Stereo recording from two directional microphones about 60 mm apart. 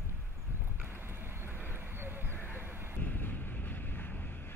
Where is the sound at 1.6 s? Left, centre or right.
Right.